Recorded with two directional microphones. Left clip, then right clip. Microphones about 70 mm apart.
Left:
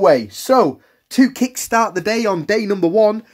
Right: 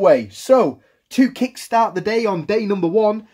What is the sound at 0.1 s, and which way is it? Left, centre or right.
Speech, left.